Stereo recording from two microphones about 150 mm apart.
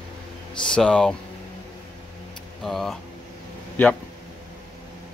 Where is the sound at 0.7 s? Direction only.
5° left (ahead or behind).